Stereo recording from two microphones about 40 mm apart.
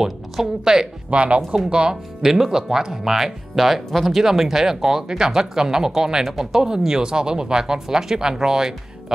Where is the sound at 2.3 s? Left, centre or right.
Centre.